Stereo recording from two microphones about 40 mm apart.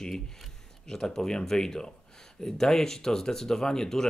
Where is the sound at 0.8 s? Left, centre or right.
Centre.